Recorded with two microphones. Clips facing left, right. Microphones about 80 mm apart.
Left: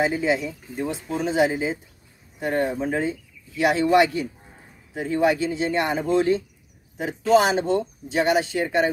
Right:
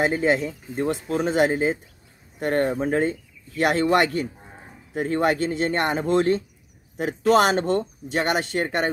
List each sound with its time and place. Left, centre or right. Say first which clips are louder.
0.0 s speech: right 1 dB; right